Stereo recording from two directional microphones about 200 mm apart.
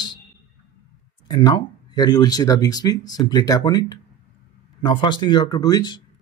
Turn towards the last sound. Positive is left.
turn(degrees=20)  # may be behind; listen again after turning